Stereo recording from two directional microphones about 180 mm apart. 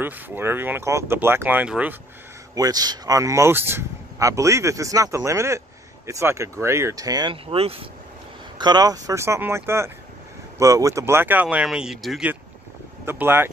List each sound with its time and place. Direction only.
0.0 s speech: 10° right (ahead or behind)
2.5 s speech: 20° right (ahead or behind)